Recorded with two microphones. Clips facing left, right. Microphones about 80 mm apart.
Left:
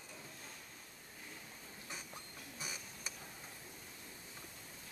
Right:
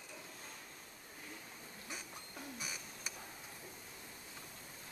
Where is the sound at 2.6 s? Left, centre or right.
Left.